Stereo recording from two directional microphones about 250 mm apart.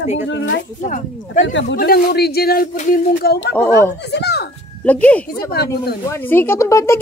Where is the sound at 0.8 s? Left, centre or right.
Left.